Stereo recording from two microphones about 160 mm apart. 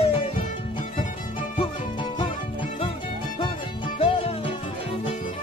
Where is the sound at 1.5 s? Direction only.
30° left (ahead or behind).